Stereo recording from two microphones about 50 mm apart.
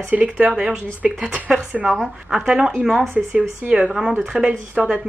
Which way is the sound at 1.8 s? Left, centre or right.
Centre.